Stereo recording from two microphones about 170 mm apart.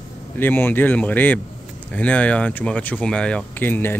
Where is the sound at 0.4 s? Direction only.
10° left (ahead or behind).